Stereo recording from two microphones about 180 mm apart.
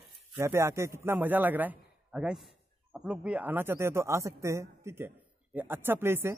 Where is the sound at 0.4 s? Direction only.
15° right (ahead or behind).